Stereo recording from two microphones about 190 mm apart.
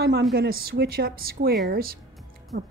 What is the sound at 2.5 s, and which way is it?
Speech, 65° right (ahead or behind).